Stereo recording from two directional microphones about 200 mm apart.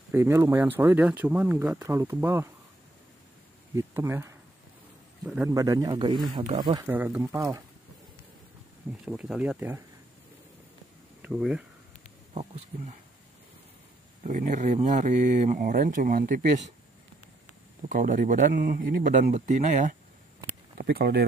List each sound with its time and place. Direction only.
0.1 s speech: 15° right (ahead or behind)
3.7 s speech: 15° right (ahead or behind)
5.2 s speech: 5° right (ahead or behind)
5.5 s speech: 15° right (ahead or behind)
9.0 s speech: 5° right (ahead or behind)
11.2 s speech: 5° right (ahead or behind)
12.4 s speech: 35° right (ahead or behind)
14.2 s speech: 40° right (ahead or behind)
17.8 s speech: 45° right (ahead or behind)
20.4 s a sound: 50° right (ahead or behind)